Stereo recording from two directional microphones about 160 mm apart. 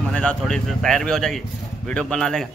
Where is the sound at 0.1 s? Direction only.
5° left (ahead or behind).